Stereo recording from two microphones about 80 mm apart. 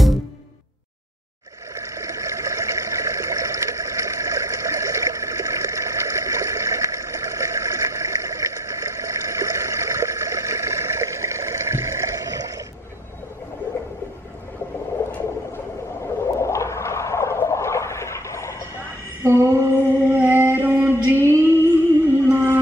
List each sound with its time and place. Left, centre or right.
1.8 s vehicle: right
15.0 s a sound: left
16.2 s whale vocalization: left
19.2 s female singing: right
20.1 s a sound: right
21.3 s music: right